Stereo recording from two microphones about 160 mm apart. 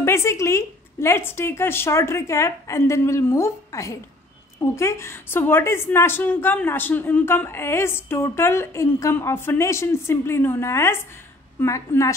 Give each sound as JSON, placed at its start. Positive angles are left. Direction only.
{"t": 0.0, "sound": "a woman's voice", "side_deg": 15}